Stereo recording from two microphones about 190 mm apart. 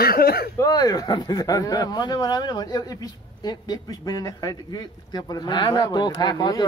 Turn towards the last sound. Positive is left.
turn(degrees=20)  # may be behind; listen again after turning